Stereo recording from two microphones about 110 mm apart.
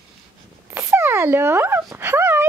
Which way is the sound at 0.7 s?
25° right (ahead or behind).